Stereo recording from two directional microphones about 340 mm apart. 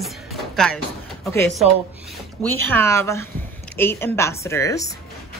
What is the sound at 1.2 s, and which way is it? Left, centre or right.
Speech, centre.